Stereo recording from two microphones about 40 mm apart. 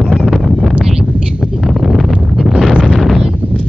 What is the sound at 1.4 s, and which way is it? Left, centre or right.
Wind noise, centre.